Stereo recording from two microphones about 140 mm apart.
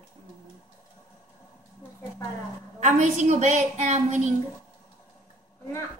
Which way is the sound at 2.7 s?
60° right (ahead or behind).